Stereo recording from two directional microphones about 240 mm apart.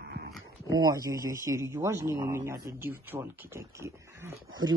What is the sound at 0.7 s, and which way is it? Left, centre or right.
A man's voice, centre.